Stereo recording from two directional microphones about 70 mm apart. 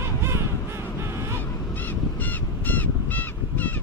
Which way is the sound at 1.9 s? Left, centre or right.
Left.